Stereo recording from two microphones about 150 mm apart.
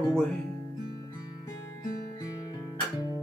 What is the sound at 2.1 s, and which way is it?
Guitar, 25° left (ahead or behind).